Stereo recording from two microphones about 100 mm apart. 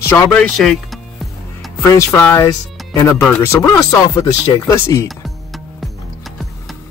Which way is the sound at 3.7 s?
40° left (ahead or behind).